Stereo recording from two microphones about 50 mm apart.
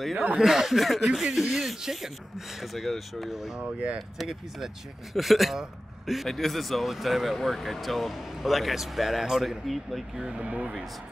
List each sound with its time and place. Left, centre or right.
0.1 s speech: right
0.4 s speech: centre
1.2 s speech: centre
10.2 s speech: right